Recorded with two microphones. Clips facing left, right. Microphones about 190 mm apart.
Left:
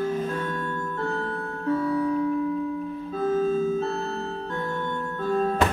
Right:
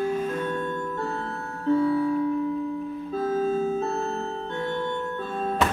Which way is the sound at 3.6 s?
35° right (ahead or behind).